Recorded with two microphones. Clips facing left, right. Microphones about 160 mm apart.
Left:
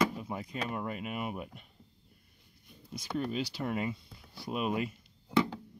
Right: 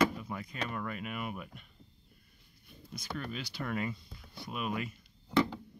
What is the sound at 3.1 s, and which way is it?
Speech, 30° left (ahead or behind).